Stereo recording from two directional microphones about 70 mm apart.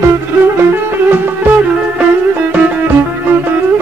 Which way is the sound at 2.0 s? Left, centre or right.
Right.